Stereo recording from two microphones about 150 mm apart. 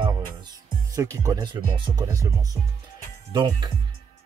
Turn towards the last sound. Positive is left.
turn(degrees=-30)  # may be behind; listen again after turning